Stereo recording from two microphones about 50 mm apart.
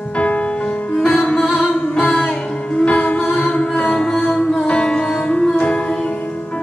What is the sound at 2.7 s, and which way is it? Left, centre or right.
Music, left.